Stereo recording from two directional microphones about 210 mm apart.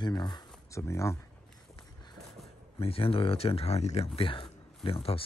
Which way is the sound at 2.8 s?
25° left (ahead or behind).